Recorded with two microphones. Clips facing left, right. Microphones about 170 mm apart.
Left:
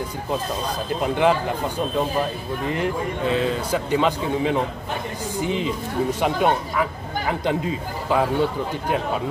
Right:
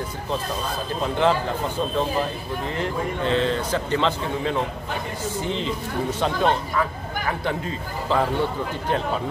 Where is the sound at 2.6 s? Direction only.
15° left (ahead or behind).